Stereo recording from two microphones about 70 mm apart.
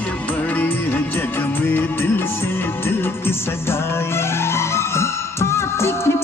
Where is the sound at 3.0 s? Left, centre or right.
Left.